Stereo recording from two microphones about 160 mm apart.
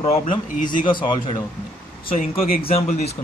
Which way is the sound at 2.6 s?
40° left (ahead or behind).